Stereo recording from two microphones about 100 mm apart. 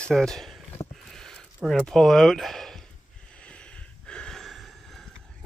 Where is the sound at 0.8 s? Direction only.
35° left (ahead or behind).